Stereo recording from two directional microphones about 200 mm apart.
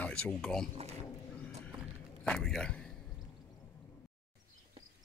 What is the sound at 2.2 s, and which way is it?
Speech, 5° left (ahead or behind).